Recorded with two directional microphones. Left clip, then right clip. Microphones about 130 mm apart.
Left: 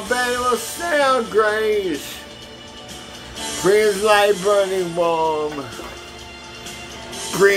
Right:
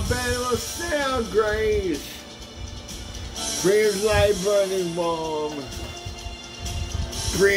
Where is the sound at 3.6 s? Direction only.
30° right (ahead or behind).